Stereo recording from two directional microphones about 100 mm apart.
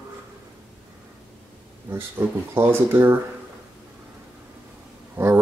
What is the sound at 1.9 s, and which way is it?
Speech, 25° right (ahead or behind).